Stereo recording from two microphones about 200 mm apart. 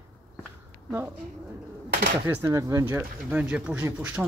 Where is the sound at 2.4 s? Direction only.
15° right (ahead or behind).